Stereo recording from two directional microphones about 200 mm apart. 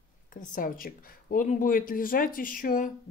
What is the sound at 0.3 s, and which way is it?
Speech, 40° left (ahead or behind).